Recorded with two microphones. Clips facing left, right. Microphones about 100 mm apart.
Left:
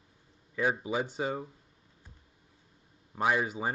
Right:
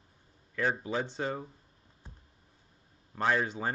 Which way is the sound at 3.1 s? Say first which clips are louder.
Left 1 dB; 10° left (ahead or behind).